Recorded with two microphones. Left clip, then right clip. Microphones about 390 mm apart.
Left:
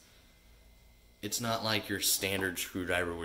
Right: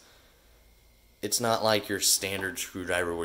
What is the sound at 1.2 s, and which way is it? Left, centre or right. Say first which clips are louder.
Speech: right 8 dB; centre.